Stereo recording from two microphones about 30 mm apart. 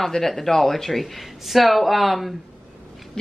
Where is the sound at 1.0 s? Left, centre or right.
Centre.